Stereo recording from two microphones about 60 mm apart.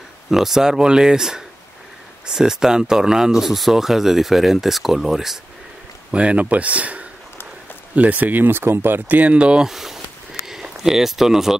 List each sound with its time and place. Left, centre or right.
0.3 s speech: centre
6.1 s speech: right
9.2 s speech: right
10.4 s a sound: centre